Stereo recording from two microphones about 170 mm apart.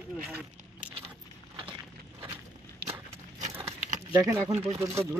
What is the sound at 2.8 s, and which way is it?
Horse, 65° right (ahead or behind).